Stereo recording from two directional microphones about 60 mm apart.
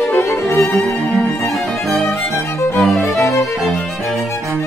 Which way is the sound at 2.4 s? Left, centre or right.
Left.